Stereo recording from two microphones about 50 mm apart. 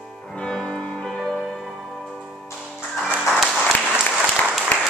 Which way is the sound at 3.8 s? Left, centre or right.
Centre.